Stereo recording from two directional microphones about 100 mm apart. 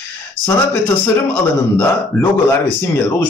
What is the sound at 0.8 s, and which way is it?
Speech, 15° left (ahead or behind).